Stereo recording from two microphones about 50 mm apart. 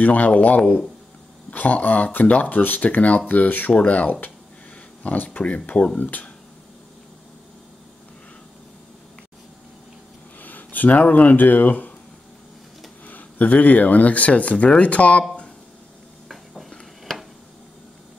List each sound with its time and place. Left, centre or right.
0.0 s speech: left
10.4 s speech: left
13.0 s speech: left
17.0 s a sound: centre